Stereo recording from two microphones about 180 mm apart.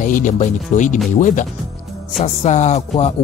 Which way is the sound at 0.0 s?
45° left (ahead or behind).